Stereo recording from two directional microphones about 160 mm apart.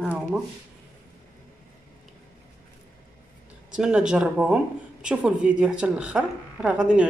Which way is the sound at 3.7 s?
5° right (ahead or behind).